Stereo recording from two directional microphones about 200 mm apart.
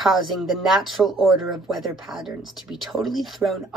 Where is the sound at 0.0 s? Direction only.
Centre (ahead or behind).